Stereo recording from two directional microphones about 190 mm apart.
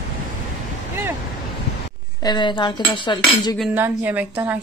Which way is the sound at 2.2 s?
25° left (ahead or behind).